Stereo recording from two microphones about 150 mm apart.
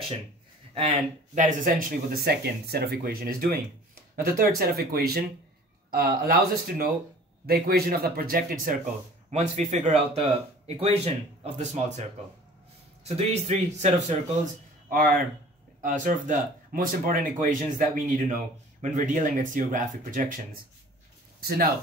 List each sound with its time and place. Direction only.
1.3 s a man's voice: 60° right (ahead or behind)
9.3 s speech: 50° right (ahead or behind)
13.0 s speech: 45° right (ahead or behind)
15.8 s speech: 60° right (ahead or behind)
21.4 s speech: 90° right